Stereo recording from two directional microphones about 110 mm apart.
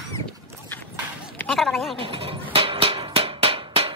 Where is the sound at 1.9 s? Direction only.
55° right (ahead or behind).